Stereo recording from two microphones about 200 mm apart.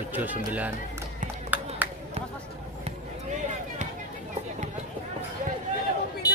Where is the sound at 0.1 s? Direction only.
10° right (ahead or behind).